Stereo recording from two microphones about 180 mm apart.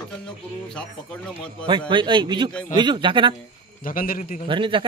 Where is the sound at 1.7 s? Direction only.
25° right (ahead or behind).